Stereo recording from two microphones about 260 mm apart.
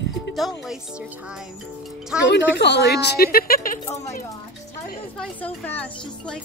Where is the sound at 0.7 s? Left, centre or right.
Centre.